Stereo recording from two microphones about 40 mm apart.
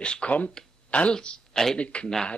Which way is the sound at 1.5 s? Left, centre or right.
Centre.